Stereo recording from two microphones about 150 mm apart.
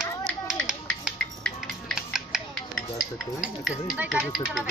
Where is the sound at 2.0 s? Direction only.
5° right (ahead or behind).